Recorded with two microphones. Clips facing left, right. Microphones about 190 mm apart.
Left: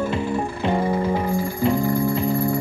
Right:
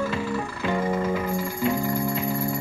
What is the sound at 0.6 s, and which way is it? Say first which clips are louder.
Music: left 3 dB; 35° left (ahead or behind).